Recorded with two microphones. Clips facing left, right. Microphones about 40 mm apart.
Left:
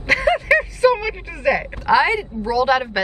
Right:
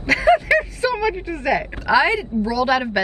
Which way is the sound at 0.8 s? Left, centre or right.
Left.